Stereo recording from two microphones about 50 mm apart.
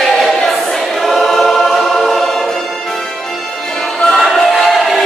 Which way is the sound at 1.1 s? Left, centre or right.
Centre.